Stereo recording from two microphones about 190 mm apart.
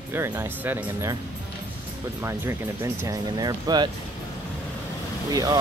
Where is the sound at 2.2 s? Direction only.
15° right (ahead or behind).